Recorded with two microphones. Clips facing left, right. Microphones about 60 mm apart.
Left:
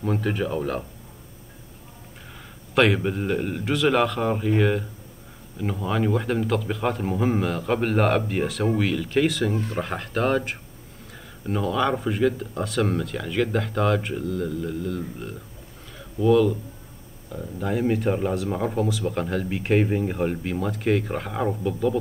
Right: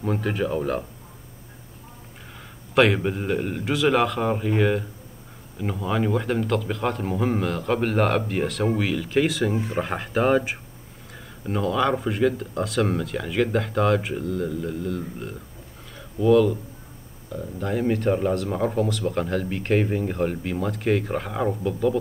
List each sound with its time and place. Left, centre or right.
0.0 s speech: centre
2.7 s speech: centre